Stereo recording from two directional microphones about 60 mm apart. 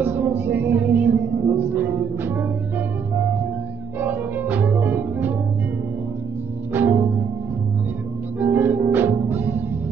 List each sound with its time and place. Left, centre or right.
0.0 s music: right
4.0 s music: right
6.7 s music: right
8.4 s music: right